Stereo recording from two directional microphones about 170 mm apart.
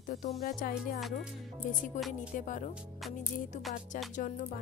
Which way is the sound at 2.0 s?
45° left (ahead or behind).